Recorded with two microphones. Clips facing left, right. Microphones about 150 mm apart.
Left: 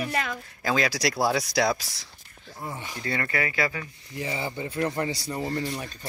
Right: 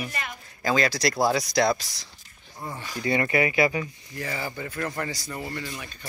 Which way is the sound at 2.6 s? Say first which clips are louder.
Right 1 dB; 20° left (ahead or behind).